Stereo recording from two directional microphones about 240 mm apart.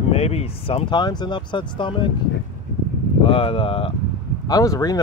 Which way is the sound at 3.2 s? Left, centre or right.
Left.